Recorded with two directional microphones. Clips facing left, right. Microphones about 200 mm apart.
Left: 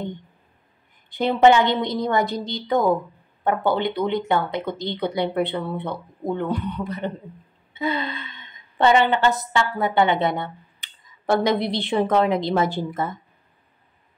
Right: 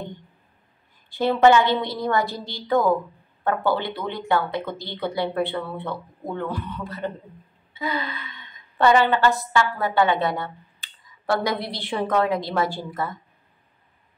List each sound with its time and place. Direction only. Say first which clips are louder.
1.1 s a woman's voice: left 1 dB; 20° left (ahead or behind)